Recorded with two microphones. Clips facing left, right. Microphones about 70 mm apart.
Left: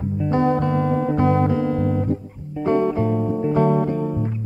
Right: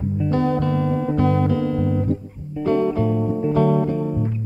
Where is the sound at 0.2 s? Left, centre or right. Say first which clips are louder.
Left 2 dB; left.